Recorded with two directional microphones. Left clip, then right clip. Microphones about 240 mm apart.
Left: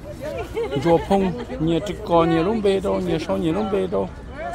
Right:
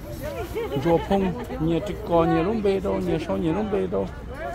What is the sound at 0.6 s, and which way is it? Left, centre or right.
Speech, left.